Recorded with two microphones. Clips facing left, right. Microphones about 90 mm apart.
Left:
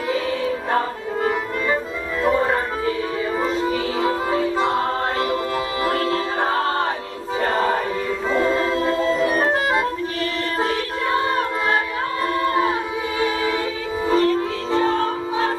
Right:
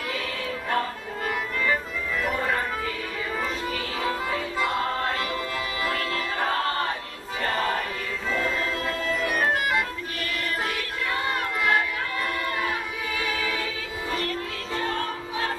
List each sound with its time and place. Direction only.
0.7 s music: 25° left (ahead or behind)
5.9 s music: 25° left (ahead or behind)
7.4 s choir: 30° left (ahead or behind)
8.3 s music: 35° left (ahead or behind)